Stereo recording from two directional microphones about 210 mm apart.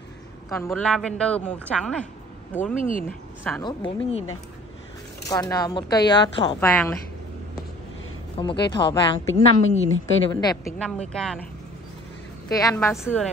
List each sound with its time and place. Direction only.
0.6 s a woman's voice: 10° left (ahead or behind)
2.8 s speech: 40° left (ahead or behind)
3.1 s a woman's voice: 5° left (ahead or behind)
3.6 s a woman's voice: 25° left (ahead or behind)
5.3 s a woman's voice: 20° left (ahead or behind)
6.6 s speech: 5° left (ahead or behind)
8.4 s a woman's voice: 25° left (ahead or behind)
9.3 s a woman's voice: 65° left (ahead or behind)
10.3 s speech: 15° left (ahead or behind)
10.8 s a woman's voice: 5° left (ahead or behind)
12.4 s a woman's voice: 15° left (ahead or behind)